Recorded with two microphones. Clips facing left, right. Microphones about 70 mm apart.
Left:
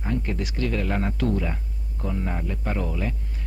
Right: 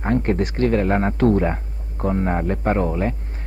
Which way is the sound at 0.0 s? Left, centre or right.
Right.